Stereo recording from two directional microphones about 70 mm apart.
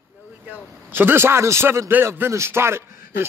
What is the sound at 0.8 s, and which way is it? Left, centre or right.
A man's voice, right.